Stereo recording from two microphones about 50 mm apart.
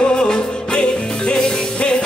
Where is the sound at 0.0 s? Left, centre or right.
Centre.